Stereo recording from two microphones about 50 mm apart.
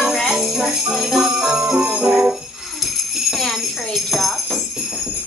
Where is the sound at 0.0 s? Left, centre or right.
Centre.